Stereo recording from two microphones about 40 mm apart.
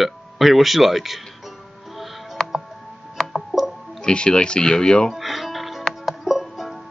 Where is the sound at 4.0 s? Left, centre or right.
Left.